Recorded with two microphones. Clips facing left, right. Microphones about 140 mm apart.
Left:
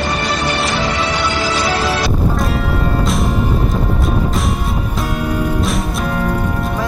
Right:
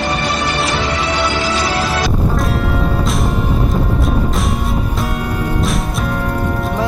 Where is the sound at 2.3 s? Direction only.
Centre (ahead or behind).